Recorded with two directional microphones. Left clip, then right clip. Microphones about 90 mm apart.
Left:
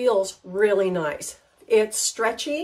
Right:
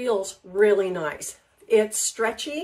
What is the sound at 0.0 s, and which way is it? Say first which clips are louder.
A woman's voice: left 4 dB; 30° left (ahead or behind).